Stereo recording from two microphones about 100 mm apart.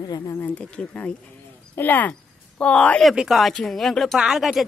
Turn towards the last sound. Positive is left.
turn(degrees=0)  # may be behind; listen again after turning